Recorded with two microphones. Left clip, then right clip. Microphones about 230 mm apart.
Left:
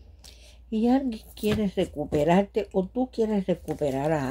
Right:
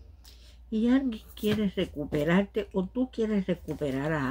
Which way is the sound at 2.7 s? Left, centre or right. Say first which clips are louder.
Left 5 dB; left.